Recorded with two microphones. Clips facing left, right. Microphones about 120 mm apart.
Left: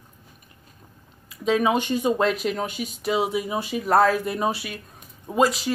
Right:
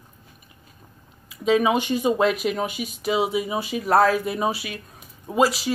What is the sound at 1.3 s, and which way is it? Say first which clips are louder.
Speech: right 2 dB; 5° right (ahead or behind).